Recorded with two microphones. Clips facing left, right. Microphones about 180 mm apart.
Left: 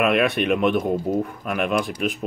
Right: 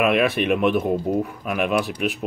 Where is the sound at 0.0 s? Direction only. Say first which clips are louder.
Even; centre (ahead or behind).